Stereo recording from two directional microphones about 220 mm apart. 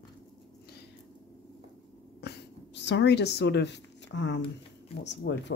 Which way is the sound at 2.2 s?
50° left (ahead or behind).